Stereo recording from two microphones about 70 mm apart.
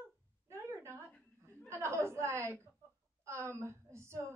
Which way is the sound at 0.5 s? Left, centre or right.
Right.